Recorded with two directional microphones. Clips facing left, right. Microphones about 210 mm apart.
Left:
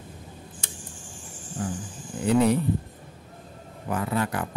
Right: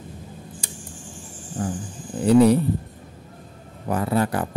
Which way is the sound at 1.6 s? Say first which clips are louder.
Right 4 dB; 40° right (ahead or behind).